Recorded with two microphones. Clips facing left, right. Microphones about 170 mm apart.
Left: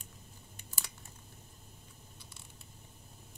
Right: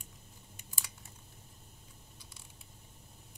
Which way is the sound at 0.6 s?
10° right (ahead or behind).